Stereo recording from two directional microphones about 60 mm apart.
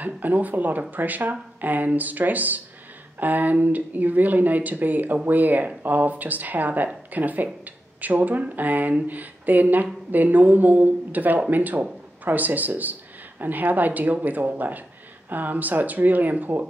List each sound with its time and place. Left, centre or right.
0.0 s speech: right